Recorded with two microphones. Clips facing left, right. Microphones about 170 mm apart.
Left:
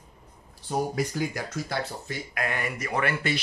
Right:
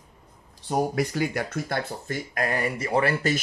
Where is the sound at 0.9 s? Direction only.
65° right (ahead or behind); by 3.3 s 30° right (ahead or behind).